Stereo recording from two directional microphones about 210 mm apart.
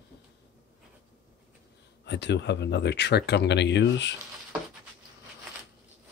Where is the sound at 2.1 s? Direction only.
55° left (ahead or behind).